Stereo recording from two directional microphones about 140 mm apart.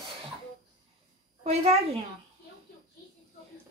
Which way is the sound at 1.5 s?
45° right (ahead or behind).